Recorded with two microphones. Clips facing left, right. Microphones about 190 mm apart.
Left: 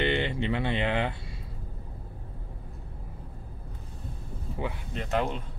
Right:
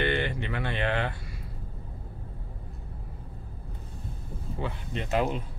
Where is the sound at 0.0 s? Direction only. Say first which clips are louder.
Left 1 dB; 20° left (ahead or behind).